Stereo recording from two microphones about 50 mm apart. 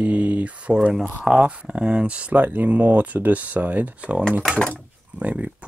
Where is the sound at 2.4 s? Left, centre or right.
Right.